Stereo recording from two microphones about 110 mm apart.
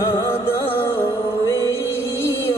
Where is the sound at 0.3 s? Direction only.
20° left (ahead or behind).